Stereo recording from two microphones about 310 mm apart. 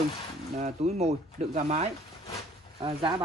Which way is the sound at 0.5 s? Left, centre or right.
Right.